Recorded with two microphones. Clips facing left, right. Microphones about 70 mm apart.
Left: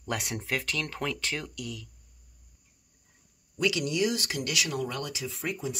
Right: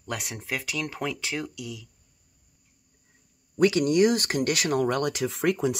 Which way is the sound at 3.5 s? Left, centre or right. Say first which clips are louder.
Right 7 dB; right.